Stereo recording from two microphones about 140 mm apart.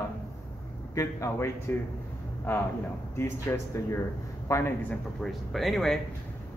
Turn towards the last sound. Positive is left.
turn(degrees=0)  # may be behind; listen again after turning